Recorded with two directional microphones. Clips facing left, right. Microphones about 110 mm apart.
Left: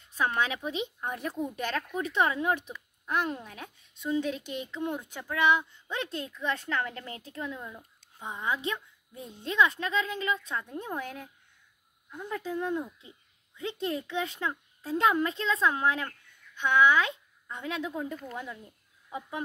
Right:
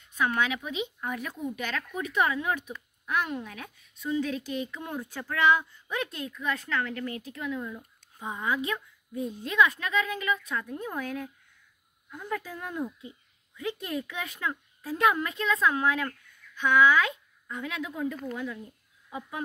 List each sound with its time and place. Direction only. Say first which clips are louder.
0.0 s a woman's voice: right 1 dB; 35° left (ahead or behind)